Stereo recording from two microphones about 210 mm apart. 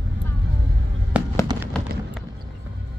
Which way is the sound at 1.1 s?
5° right (ahead or behind).